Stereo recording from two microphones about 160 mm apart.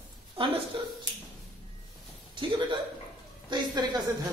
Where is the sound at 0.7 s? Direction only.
30° right (ahead or behind).